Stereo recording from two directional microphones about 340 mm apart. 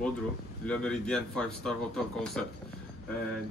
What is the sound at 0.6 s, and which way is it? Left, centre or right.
Speech, centre.